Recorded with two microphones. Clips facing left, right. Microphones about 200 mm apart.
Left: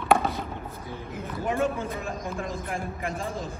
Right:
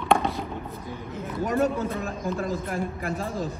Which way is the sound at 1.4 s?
40° right (ahead or behind).